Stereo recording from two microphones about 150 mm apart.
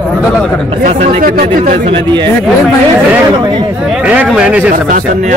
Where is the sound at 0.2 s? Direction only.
Centre (ahead or behind).